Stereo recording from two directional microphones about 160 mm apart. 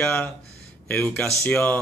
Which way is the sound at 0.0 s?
5° left (ahead or behind).